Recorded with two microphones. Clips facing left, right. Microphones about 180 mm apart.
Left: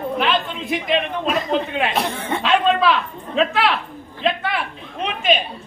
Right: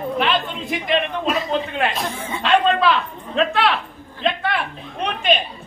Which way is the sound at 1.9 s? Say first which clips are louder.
Left 4 dB; 70° left (ahead or behind).